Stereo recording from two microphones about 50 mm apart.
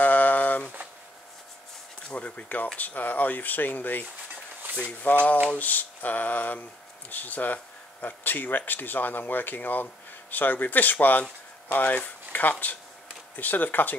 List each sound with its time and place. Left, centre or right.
0.0 s a sound: left
2.1 s speech: left
5.1 s speech: left